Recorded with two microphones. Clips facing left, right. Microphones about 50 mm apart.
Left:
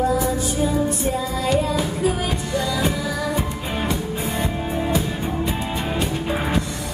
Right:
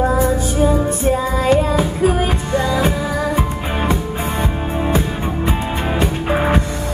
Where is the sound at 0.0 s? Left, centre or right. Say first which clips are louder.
Right 4 dB; right.